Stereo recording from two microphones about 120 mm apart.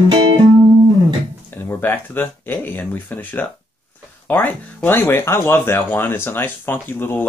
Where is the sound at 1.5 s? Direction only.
15° left (ahead or behind).